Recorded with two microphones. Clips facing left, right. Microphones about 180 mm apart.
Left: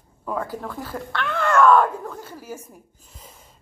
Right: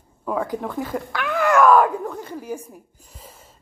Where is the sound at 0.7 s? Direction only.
5° right (ahead or behind).